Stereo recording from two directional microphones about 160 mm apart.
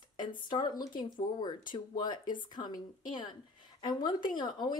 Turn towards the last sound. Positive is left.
turn(degrees=30)  # may be behind; listen again after turning